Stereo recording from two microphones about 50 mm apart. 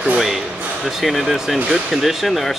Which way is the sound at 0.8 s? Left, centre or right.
Centre.